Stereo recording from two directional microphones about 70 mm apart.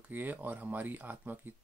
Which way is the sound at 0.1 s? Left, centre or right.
Right.